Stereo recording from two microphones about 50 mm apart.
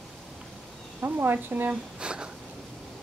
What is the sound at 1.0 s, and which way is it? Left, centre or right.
Speech, right.